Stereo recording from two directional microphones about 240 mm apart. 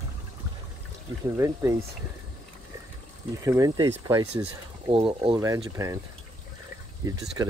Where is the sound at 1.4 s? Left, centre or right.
Centre.